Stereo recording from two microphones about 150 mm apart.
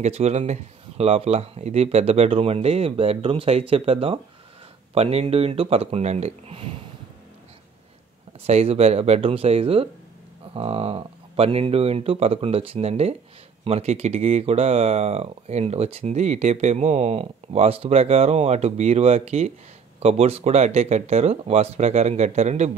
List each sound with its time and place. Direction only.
0.0 s speech: 50° right (ahead or behind)
8.5 s speech: 45° right (ahead or behind)